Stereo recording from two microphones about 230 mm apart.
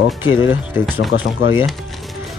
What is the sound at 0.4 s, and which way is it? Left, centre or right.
Speech, centre.